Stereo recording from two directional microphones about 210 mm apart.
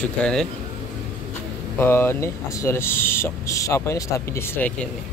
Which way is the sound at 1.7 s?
10° left (ahead or behind).